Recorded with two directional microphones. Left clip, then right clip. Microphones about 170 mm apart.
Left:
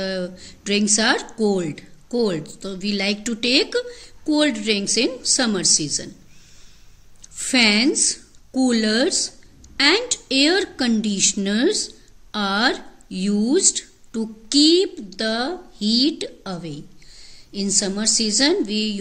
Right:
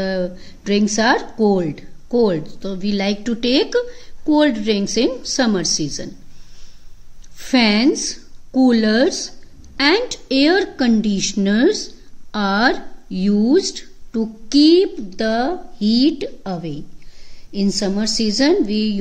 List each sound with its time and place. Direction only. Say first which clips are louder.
0.0 s speech: right 4 dB; 30° right (ahead or behind)
7.3 s a woman's voice: right 1 dB; 30° right (ahead or behind)